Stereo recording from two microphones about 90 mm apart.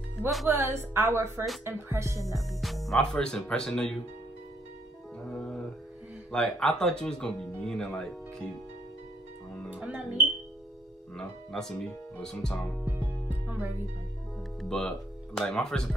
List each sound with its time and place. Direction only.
0.5 s a woman's voice: 30° right (ahead or behind)
2.6 s music: centre (ahead or behind)
3.0 s speech: 10° left (ahead or behind)
5.2 s music: 10° left (ahead or behind)
6.3 s speech: 10° left (ahead or behind)
9.8 s speech: 15° right (ahead or behind)
11.1 s speech: 5° left (ahead or behind)
12.8 s music: 20° right (ahead or behind)
14.6 s speech: 5° left (ahead or behind)